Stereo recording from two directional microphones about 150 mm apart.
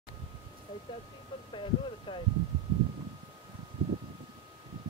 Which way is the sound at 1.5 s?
35° left (ahead or behind).